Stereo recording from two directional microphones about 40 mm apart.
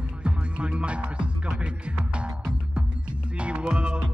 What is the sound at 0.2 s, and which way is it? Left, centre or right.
Music, right.